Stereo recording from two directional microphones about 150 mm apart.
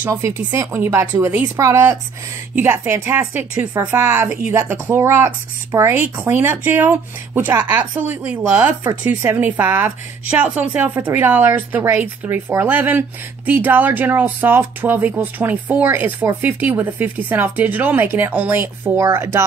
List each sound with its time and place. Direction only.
0.0 s speech: 15° right (ahead or behind)